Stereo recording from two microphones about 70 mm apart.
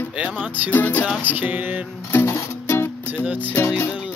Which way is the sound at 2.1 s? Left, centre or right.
Left.